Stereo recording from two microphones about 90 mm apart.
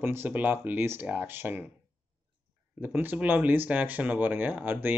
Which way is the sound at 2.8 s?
20° right (ahead or behind).